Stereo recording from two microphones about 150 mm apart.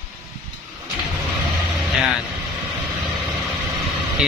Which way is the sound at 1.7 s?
5° right (ahead or behind).